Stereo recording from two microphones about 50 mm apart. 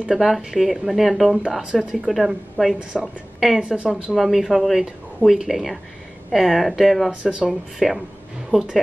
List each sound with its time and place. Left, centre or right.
0.1 s a woman's voice: centre
3.6 s speech: right
3.9 s speech: centre
7.1 s speech: centre
7.8 s speech: centre